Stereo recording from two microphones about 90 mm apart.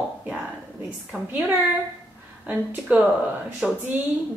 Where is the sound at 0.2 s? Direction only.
10° right (ahead or behind).